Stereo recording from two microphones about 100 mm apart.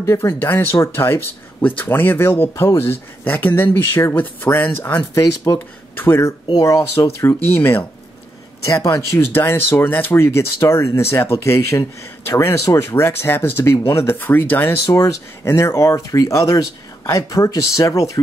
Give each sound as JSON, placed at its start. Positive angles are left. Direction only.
{"t": 0.0, "sound": "speech", "side_deg": 30}
{"t": 5.1, "sound": "speech", "side_deg": 30}
{"t": 7.2, "sound": "speech", "side_deg": 20}
{"t": 8.6, "sound": "speech", "side_deg": 35}